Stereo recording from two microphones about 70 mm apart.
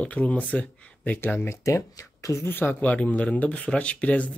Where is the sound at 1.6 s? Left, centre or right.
Left.